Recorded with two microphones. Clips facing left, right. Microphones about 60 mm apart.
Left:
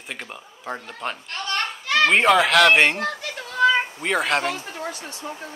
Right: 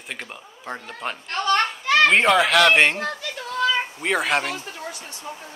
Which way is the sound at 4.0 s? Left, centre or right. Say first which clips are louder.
Even; centre.